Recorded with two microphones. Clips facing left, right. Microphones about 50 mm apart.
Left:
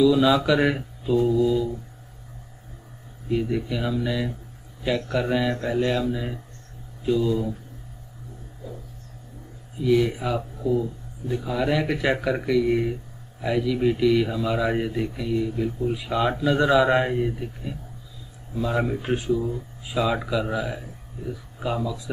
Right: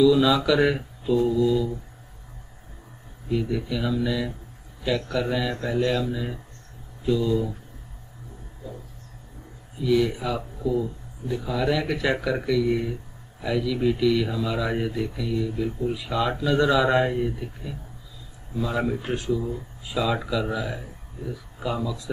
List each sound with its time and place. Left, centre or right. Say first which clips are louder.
0.1 s speech: left 1 dB; centre
3.3 s speech: left 1 dB; centre
9.8 s speech: left 1 dB; left
21.8 s speech: left 1 dB; centre